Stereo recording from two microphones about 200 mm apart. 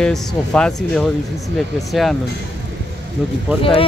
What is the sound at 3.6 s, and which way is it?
Speech, 25° left (ahead or behind).